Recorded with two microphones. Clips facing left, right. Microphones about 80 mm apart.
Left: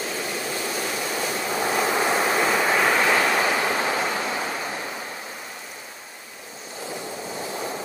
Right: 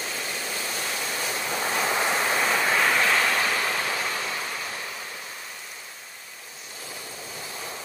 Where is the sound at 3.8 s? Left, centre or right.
Left.